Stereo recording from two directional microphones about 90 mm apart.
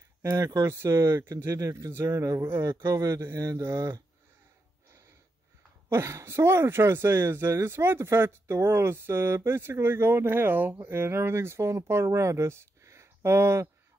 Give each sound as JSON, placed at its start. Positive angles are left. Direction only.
{"t": 0.2, "sound": "speech", "side_deg": -35}
{"t": 5.9, "sound": "speech", "side_deg": -30}